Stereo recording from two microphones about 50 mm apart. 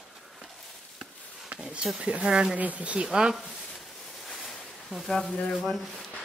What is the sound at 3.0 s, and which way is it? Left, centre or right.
Speech, centre.